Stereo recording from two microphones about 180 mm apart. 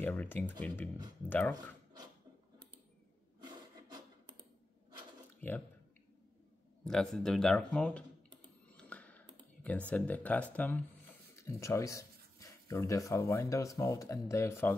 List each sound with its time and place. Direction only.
0.0 s speech: 10° left (ahead or behind)
5.4 s speech: 10° left (ahead or behind)
6.8 s speech: 5° left (ahead or behind)
8.7 s computer keyboard: 5° left (ahead or behind)
11.4 s speech: 15° left (ahead or behind)